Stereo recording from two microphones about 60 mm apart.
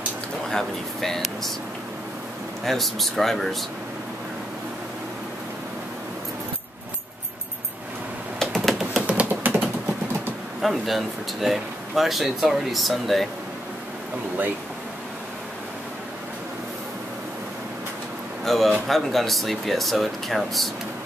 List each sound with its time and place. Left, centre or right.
0.5 s speech: centre
2.6 s speech: centre
8.4 s typing: centre
9.0 s typing: centre
9.3 s typing: right
10.6 s speech: centre
18.4 s speech: centre